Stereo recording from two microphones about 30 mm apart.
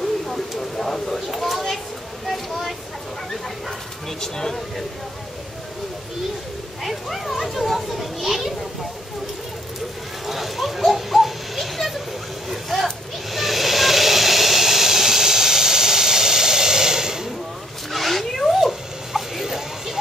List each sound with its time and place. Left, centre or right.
0.6 s a sound: centre
2.2 s vehicle: centre
4.2 s speech: centre
6.8 s children playing: centre
10.2 s a sound: centre
12.4 s vehicle: centre
13.3 s hiss: centre
17.9 s zipper: centre
18.5 s a sound: centre